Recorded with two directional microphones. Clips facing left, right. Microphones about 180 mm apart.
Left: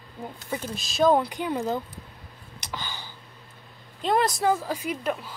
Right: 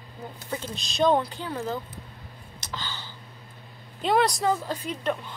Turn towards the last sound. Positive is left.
turn(degrees=5)  # may be behind; listen again after turning